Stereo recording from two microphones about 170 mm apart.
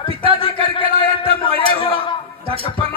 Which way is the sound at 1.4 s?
30° left (ahead or behind).